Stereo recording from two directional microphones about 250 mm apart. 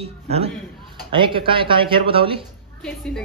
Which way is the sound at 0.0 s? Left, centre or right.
Right.